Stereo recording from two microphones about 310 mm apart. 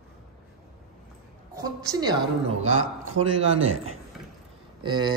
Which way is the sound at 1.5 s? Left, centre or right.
Centre.